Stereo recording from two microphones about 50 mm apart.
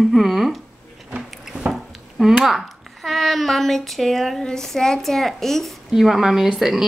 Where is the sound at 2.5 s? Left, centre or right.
Centre.